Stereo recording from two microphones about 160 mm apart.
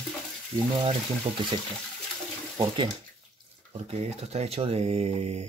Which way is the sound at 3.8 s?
40° right (ahead or behind).